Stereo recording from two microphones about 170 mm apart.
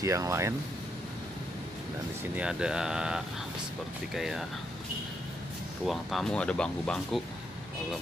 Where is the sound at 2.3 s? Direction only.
5° right (ahead or behind).